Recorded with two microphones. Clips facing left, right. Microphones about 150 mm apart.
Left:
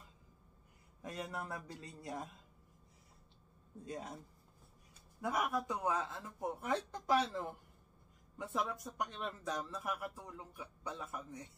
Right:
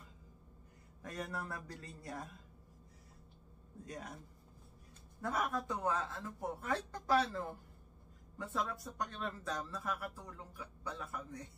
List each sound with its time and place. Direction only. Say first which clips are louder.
1.0 s speech: even; 20° left (ahead or behind)
3.8 s speech: left 2 dB; 25° left (ahead or behind)
5.2 s speech: left 1 dB; 10° left (ahead or behind)